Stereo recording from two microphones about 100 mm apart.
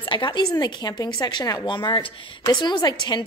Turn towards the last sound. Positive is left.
turn(degrees=45)  # may be behind; listen again after turning